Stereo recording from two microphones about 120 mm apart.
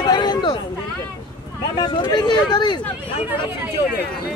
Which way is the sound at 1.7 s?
35° left (ahead or behind).